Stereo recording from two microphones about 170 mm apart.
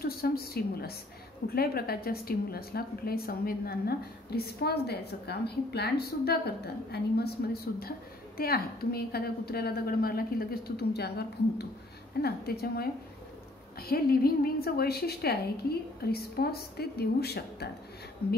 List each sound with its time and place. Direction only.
0.0 s a woman's voice: 65° left (ahead or behind)